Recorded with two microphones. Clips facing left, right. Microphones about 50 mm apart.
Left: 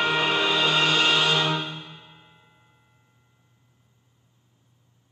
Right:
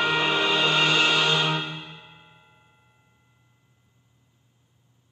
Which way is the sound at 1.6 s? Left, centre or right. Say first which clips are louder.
Right 1 dB; right.